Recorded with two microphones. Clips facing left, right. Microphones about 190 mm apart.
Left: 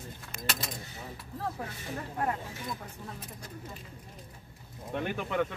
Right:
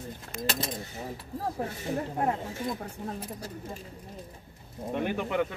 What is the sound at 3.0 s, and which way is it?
Speech, 35° right (ahead or behind).